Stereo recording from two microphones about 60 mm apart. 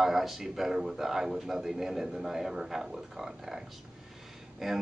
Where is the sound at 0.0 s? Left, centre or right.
Centre.